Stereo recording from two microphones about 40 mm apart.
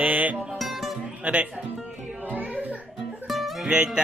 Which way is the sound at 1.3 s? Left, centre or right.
Right.